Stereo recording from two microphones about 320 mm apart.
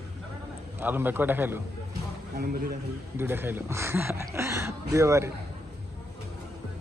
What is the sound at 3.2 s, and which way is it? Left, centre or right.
Speech, centre.